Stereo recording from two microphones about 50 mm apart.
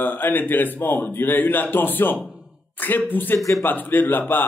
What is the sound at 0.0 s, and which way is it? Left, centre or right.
Speech, left.